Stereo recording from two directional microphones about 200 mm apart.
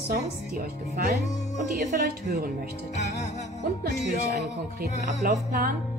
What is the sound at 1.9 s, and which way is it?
Speech, 55° right (ahead or behind).